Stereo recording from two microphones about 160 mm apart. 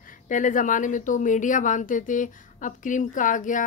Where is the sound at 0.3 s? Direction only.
50° left (ahead or behind).